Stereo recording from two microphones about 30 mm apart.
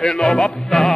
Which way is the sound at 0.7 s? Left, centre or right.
Centre.